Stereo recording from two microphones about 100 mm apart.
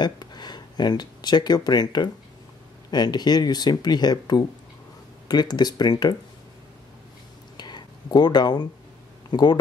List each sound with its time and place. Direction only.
0.0 s speech: 45° left (ahead or behind)
7.5 s a sound: 45° left (ahead or behind)
9.3 s speech: 45° left (ahead or behind)